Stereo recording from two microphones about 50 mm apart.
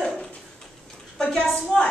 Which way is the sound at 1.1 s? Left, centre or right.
Centre.